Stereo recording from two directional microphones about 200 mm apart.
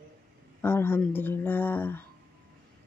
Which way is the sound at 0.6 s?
10° left (ahead or behind).